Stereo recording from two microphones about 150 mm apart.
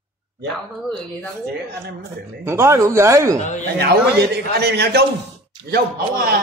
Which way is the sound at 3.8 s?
90° right.